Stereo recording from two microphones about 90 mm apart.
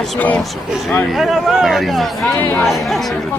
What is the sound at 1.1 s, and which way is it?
Speech, 5° right (ahead or behind).